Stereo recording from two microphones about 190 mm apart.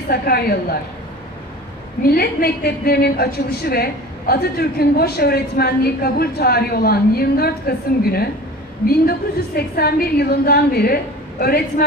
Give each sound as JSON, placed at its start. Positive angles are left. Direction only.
{"t": 0.1, "sound": "a woman's voice", "side_deg": 55}
{"t": 2.0, "sound": "a woman's voice", "side_deg": 55}
{"t": 9.6, "sound": "a woman's voice", "side_deg": 55}